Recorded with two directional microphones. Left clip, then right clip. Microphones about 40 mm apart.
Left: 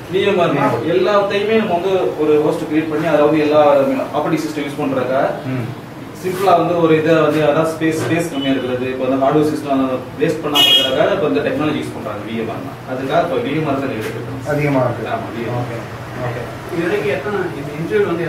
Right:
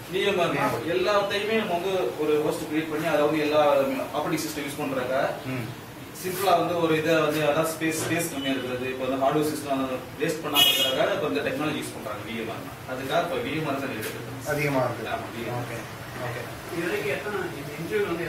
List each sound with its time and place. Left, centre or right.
0.1 s a man's voice: right
6.6 s a man's voice: right
13.1 s a man's voice: right
16.8 s a man's voice: right